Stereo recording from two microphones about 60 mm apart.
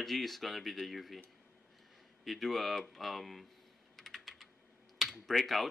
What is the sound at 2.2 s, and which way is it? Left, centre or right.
Speech, centre.